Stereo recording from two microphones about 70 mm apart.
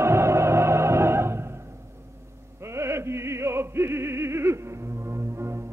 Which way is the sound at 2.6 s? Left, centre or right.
Right.